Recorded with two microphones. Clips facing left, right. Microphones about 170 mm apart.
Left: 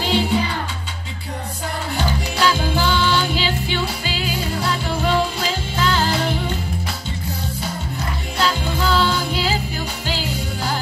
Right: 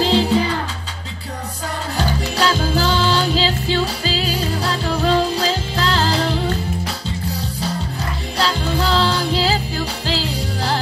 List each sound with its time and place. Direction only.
0.0 s music: 35° right (ahead or behind)
2.0 s music: 40° right (ahead or behind)
8.4 s music: 35° right (ahead or behind)